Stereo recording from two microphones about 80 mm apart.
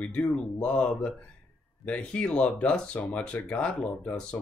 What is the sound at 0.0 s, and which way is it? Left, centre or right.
Speech, centre.